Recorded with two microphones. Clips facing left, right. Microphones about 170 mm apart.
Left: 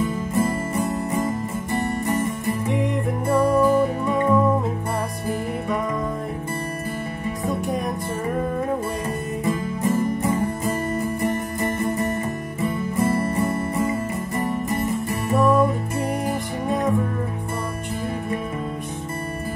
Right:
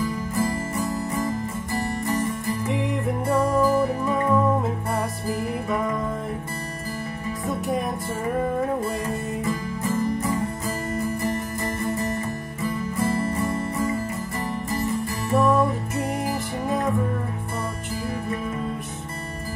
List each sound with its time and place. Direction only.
0.0 s music: 25° left (ahead or behind)
2.7 s music: centre (ahead or behind)
3.5 s music: 20° left (ahead or behind)
7.4 s music: centre (ahead or behind)
9.4 s music: 25° left (ahead or behind)
15.3 s music: centre (ahead or behind)